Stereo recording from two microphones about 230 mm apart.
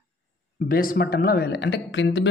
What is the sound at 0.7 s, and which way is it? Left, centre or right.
Speech, left.